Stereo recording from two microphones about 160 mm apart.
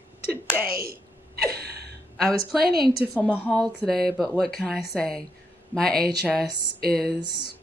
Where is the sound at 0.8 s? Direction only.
75° right (ahead or behind).